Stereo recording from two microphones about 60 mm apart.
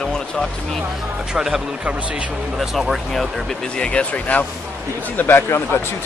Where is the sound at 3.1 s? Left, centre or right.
Centre.